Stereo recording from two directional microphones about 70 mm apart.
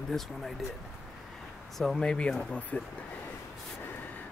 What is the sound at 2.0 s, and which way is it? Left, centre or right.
Speech, centre.